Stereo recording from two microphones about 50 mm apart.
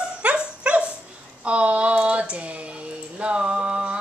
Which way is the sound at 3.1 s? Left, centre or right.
Right.